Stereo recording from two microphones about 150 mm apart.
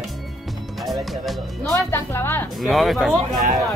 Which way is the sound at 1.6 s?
15° left (ahead or behind).